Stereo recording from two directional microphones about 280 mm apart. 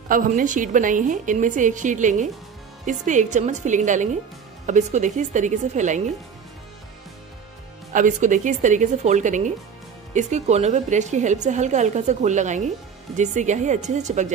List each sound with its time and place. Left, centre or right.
0.1 s a woman's voice: right
7.9 s a woman's voice: right